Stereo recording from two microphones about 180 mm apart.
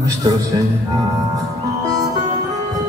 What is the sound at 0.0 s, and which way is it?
Speech, 20° right (ahead or behind).